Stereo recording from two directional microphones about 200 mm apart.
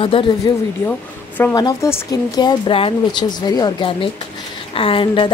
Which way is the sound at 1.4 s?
20° left (ahead or behind).